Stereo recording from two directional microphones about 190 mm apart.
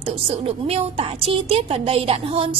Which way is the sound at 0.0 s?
30° right (ahead or behind).